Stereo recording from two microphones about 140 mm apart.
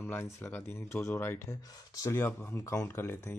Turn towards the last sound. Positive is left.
turn(degrees=15)  # may be behind; listen again after turning